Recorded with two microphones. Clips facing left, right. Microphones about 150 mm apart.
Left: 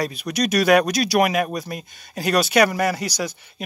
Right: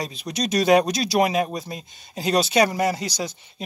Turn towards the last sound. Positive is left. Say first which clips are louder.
# left 1 dB
turn(degrees=-25)  # may be behind; listen again after turning